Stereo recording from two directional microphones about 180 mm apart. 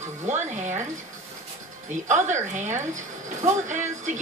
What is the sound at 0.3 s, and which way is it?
Speech, 40° right (ahead or behind).